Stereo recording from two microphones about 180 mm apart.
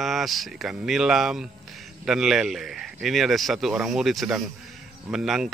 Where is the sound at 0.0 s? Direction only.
Centre (ahead or behind).